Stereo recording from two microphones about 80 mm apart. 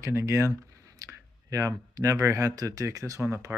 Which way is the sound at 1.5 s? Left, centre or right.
Right.